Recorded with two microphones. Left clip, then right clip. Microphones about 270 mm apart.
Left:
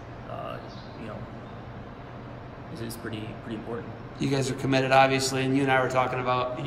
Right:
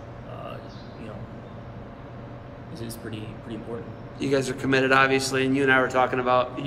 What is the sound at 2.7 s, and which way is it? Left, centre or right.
Speech, centre.